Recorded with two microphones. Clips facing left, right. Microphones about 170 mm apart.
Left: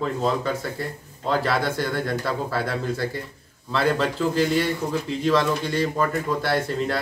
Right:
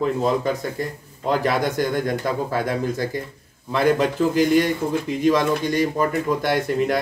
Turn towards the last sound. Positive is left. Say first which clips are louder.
# right 3 dB
turn(degrees=-15)  # may be behind; listen again after turning